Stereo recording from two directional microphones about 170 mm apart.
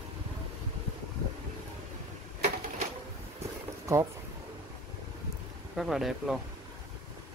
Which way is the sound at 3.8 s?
15° right (ahead or behind).